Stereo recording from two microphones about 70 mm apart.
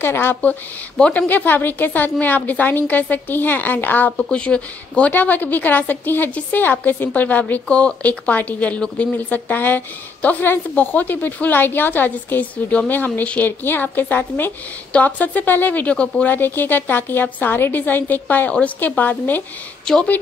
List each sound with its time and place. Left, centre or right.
0.0 s a woman's voice: left
4.2 s speech: centre
16.3 s speech: left
19.8 s a woman's voice: centre